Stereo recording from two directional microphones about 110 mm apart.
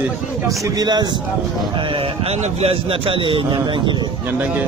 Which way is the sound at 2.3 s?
75° right (ahead or behind).